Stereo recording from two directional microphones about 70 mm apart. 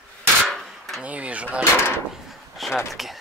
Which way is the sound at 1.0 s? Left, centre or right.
Centre.